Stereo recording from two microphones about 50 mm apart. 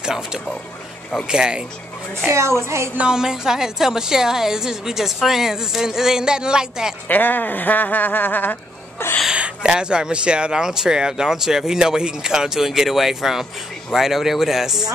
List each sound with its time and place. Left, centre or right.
0.0 s speech: centre
2.3 s a woman's voice: right
3.1 s speech: centre
7.1 s speech: left
9.3 s a man's voice: centre